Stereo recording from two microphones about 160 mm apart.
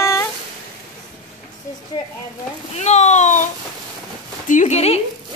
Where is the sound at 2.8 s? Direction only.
45° left (ahead or behind).